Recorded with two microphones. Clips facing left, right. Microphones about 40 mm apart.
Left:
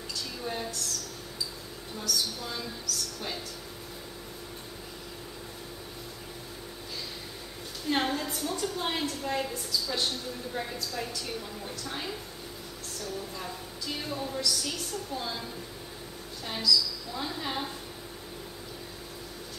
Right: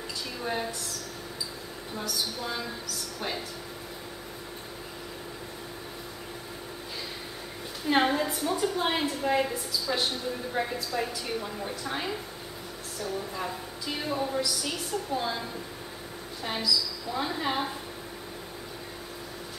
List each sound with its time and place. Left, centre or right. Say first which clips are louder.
0.4 s speech: right 4 dB; centre
2.0 s a woman's voice: even; centre
7.8 s a woman's voice: right 5 dB; centre
16.4 s a woman's voice: left 1 dB; centre